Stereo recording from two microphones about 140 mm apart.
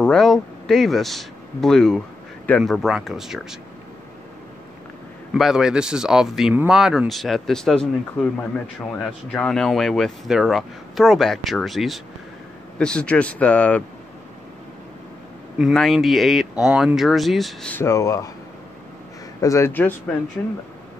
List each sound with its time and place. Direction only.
0.0 s speech: 5° left (ahead or behind)
5.3 s speech: 5° right (ahead or behind)
15.5 s speech: centre (ahead or behind)
17.8 s speech: 20° left (ahead or behind)
19.4 s speech: 20° left (ahead or behind)